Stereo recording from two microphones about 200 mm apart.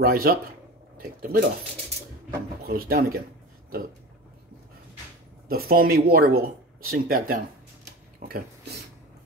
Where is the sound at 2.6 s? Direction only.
50° right (ahead or behind).